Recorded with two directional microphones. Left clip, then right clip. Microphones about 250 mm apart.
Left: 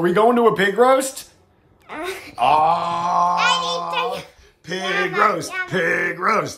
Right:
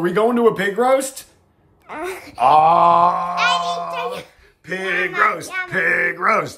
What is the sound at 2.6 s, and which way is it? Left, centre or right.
Groan, right.